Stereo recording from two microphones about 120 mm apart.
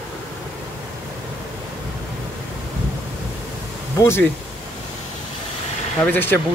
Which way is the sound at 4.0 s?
20° left (ahead or behind).